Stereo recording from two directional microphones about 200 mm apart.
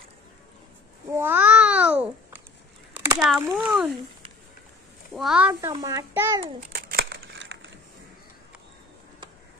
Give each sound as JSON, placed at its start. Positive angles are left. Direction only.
{"t": 1.1, "sound": "babbling", "side_deg": -10}
{"t": 2.9, "sound": "speech", "side_deg": -10}
{"t": 5.1, "sound": "a child's voice", "side_deg": 0}
{"t": 5.5, "sound": "a child's voice", "side_deg": -15}
{"t": 6.4, "sound": "crumpling", "side_deg": -40}